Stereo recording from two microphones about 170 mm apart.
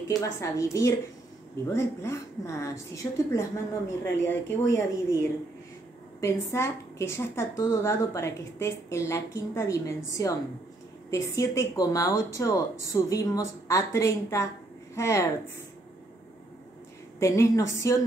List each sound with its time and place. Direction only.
0.1 s a woman's voice: 15° left (ahead or behind)
6.2 s a woman's voice: 15° left (ahead or behind)
17.2 s a woman's voice: 15° left (ahead or behind)